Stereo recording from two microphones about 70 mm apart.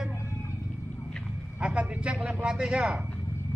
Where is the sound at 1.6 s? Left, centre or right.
Centre.